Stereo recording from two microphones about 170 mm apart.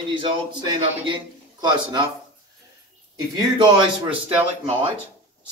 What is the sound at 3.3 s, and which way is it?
Speech, 25° right (ahead or behind).